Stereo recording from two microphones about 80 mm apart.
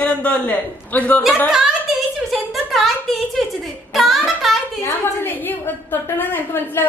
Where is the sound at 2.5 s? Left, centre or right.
Centre.